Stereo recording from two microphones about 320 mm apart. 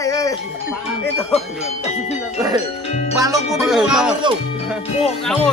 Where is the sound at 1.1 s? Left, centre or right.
Centre.